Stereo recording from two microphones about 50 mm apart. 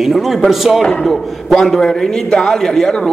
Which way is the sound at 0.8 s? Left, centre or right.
Centre.